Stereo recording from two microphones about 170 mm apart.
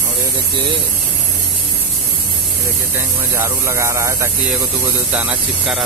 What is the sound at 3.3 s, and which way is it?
Speech, 15° right (ahead or behind).